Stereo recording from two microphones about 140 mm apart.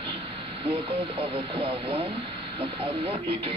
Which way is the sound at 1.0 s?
45° right (ahead or behind).